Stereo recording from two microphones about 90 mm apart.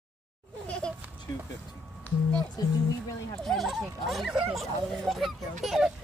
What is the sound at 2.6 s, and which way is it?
Speech, 45° left (ahead or behind).